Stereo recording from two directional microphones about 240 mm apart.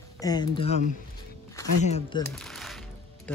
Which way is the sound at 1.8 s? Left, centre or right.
Left.